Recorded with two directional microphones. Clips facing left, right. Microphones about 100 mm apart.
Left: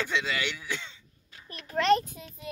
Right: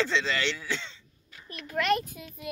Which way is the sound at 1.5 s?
35° left (ahead or behind).